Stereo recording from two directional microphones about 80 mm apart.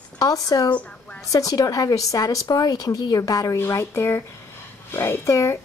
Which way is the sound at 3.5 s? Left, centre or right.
Left.